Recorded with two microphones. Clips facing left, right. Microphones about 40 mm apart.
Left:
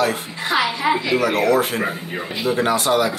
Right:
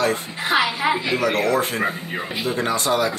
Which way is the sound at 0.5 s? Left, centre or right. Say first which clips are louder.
Even; right.